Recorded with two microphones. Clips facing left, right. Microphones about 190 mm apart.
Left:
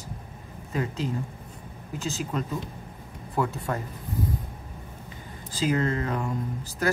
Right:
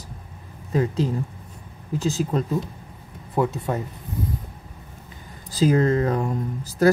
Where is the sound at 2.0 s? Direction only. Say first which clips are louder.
Right 6 dB; 35° right (ahead or behind).